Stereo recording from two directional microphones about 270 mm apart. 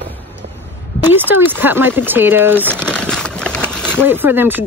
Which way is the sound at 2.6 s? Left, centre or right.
Centre.